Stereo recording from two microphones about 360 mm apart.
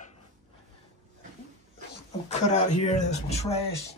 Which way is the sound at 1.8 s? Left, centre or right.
Centre.